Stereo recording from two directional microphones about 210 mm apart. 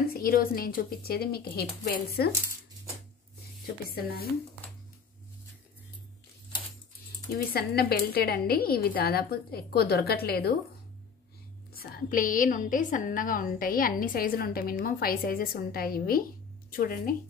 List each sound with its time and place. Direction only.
0.1 s a woman's voice: 45° left (ahead or behind)
3.9 s a woman's voice: 45° left (ahead or behind)
7.5 s a woman's voice: 45° left (ahead or behind)
11.7 s a woman's voice: 45° left (ahead or behind)